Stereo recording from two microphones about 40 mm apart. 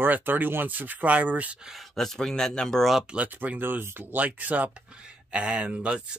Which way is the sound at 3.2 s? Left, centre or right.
Right.